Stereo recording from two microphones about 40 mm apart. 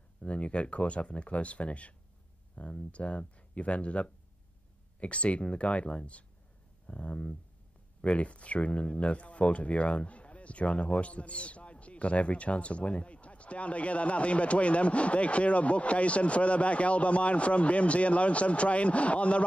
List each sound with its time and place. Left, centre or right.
0.2 s speech: left